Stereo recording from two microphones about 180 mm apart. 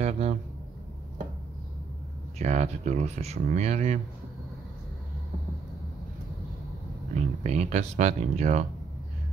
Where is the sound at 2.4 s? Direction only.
40° right (ahead or behind).